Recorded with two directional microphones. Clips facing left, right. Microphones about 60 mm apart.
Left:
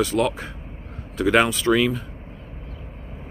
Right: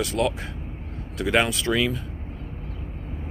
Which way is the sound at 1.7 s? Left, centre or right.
Left.